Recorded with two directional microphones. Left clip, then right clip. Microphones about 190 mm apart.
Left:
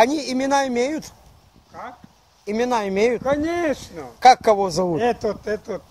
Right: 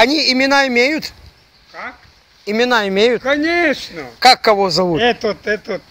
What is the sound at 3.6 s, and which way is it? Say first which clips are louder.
Speech: right 7 dB; centre (ahead or behind).